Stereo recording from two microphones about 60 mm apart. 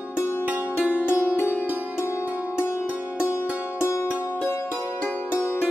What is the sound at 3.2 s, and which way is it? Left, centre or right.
Music, left.